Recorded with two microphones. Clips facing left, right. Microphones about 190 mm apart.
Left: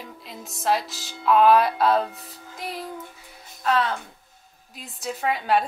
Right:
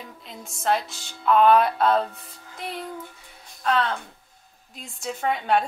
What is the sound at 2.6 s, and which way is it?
Music, centre (ahead or behind).